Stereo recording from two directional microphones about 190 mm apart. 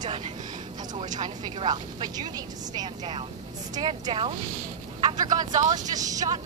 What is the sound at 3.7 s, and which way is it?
Vehicle, 25° right (ahead or behind).